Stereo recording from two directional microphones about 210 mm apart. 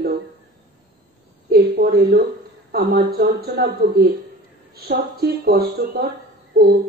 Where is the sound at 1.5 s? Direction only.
45° right (ahead or behind).